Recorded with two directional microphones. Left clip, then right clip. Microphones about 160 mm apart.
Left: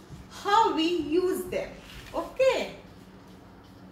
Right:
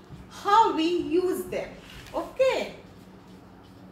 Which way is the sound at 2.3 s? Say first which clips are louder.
Even; 10° right (ahead or behind).